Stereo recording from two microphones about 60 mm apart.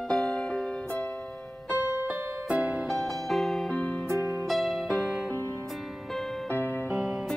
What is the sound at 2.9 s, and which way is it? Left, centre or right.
Music, centre.